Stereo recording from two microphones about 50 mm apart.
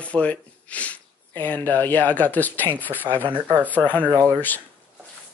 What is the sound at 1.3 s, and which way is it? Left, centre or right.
Speech, left.